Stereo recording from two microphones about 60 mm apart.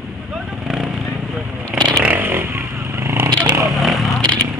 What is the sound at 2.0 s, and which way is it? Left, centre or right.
Vehicle, right.